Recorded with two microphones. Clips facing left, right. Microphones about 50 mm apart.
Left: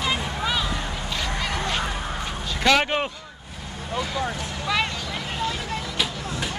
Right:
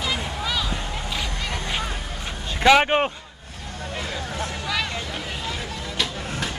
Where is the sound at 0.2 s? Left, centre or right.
Centre.